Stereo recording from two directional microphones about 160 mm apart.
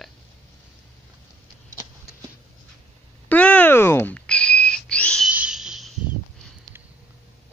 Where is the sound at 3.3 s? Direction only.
10° left (ahead or behind).